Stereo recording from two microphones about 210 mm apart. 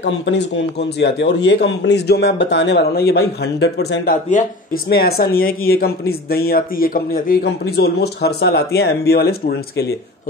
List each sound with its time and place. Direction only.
0.0 s speech: 55° left (ahead or behind)